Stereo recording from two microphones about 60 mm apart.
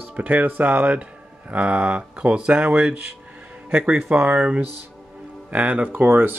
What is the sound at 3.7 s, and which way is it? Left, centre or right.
Speech, right.